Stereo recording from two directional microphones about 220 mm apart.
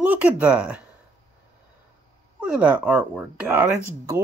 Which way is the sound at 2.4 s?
5° right (ahead or behind).